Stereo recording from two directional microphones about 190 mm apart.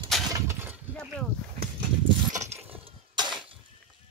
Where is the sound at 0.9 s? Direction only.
5° left (ahead or behind).